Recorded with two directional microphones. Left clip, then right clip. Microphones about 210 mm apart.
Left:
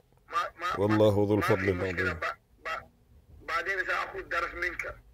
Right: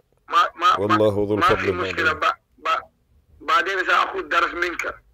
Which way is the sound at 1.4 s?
40° right (ahead or behind).